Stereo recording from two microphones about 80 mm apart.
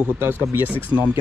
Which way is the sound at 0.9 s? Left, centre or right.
Right.